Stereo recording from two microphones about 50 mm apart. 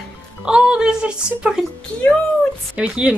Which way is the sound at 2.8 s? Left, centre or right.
Right.